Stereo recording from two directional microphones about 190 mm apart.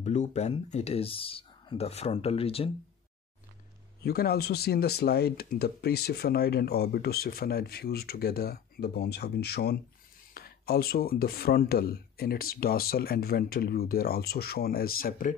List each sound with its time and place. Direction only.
0.0 s speech: 35° left (ahead or behind)
4.0 s speech: 55° left (ahead or behind)